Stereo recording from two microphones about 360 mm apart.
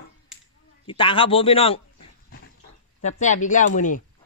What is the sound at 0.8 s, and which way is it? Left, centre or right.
Speech, centre.